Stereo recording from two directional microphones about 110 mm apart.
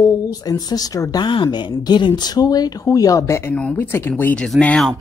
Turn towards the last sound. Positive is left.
turn(degrees=10)  # may be behind; listen again after turning